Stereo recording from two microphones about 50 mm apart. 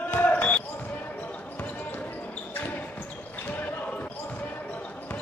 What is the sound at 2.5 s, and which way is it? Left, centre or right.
Basketball bounce, left.